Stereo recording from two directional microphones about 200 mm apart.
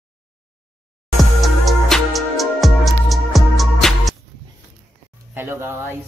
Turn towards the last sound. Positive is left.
turn(degrees=-10)  # may be behind; listen again after turning